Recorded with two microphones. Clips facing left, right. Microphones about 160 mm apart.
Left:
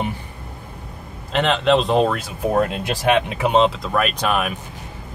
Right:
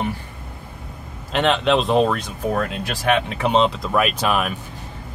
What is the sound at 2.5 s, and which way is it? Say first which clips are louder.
Speech: left 6 dB; 20° left (ahead or behind).